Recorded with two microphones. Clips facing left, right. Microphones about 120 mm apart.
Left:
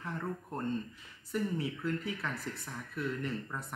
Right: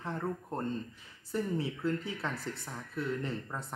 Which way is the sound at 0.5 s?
30° right (ahead or behind).